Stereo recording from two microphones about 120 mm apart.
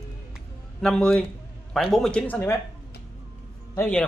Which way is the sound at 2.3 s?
15° left (ahead or behind).